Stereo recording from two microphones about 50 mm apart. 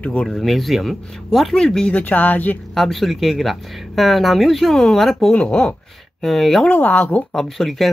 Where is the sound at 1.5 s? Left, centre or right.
Centre.